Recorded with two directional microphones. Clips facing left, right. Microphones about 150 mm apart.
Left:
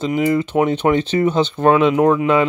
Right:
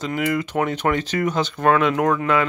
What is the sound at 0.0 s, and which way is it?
Speech, 25° left (ahead or behind).